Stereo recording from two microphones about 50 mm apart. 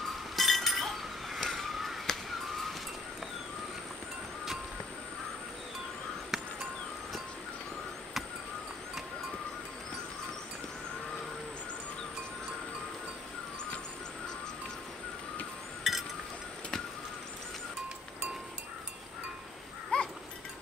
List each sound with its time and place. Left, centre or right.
0.4 s glass: centre
6.3 s music: centre
15.8 s a sound: centre
19.9 s cowbell: left